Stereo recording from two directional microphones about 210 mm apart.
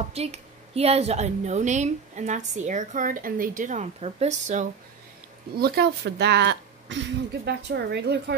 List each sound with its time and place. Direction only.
0.1 s a woman's voice: 30° right (ahead or behind)
5.6 s a woman's voice: 50° right (ahead or behind)